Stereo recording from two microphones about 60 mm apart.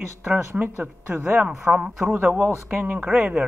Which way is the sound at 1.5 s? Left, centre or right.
Centre.